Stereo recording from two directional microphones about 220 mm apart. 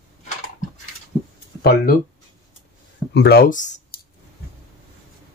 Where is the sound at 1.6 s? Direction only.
45° left (ahead or behind).